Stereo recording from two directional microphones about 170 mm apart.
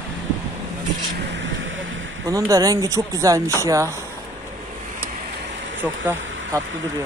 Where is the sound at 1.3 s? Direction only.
90° right.